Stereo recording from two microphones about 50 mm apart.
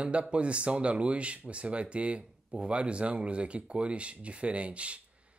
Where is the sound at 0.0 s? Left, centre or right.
Right.